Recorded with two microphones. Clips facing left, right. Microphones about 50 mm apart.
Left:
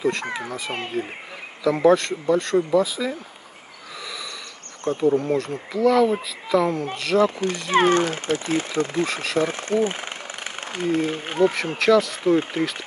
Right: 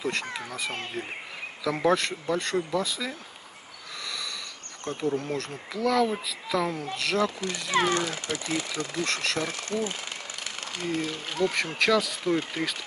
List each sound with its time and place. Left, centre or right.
0.0 s speech: centre
0.3 s speech: centre
4.0 s a sound: centre
5.1 s speech: centre
7.2 s speech: left
9.0 s speech: centre
9.4 s speech: left
11.5 s speech: centre
12.2 s speech: left